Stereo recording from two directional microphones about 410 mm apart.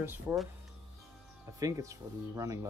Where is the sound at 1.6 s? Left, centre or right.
Centre.